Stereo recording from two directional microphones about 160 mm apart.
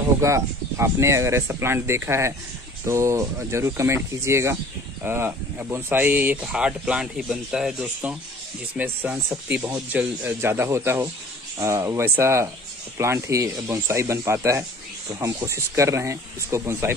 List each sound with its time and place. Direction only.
0.2 s speech: 20° right (ahead or behind)